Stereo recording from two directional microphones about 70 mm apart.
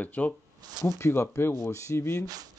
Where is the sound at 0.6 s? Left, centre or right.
Right.